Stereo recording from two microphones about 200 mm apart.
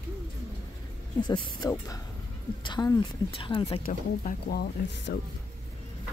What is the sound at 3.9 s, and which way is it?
Speech, 40° left (ahead or behind).